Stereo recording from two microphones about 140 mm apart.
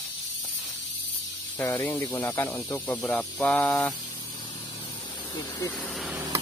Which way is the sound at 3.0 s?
5° left (ahead or behind).